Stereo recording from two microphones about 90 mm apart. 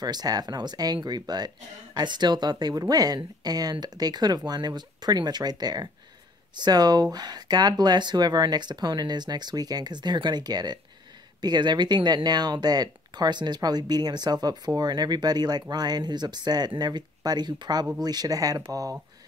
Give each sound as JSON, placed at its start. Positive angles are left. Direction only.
{"t": 0.0, "sound": "speech", "side_deg": -45}